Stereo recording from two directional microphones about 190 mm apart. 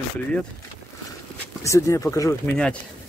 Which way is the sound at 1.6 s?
15° left (ahead or behind).